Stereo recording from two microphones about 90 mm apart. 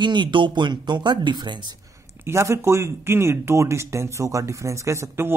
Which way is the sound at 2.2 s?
30° right (ahead or behind).